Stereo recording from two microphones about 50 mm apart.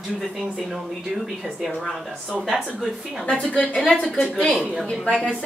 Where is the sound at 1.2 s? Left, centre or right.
Centre.